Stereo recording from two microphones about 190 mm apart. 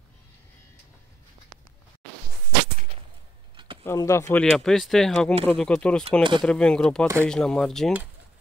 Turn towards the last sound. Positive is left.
turn(degrees=0)  # may be behind; listen again after turning